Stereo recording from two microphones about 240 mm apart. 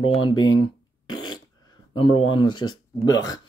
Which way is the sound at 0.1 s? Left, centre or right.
Left.